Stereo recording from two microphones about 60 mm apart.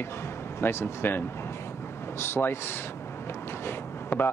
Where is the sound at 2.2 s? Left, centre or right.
Left.